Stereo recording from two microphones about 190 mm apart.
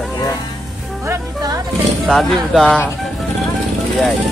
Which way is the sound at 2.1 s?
Centre (ahead or behind).